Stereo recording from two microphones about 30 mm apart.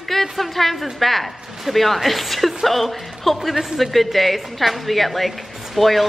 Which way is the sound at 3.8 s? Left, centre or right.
Centre.